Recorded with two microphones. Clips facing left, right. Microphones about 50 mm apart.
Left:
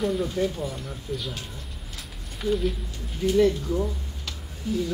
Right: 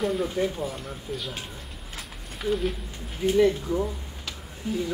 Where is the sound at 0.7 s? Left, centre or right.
Centre.